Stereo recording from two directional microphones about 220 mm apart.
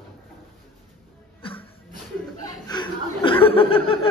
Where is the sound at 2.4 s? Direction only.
20° left (ahead or behind).